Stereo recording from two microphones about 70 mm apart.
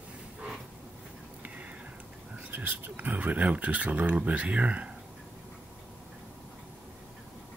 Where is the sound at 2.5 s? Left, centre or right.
Right.